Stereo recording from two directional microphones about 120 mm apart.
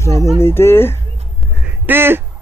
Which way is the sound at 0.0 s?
25° left (ahead or behind).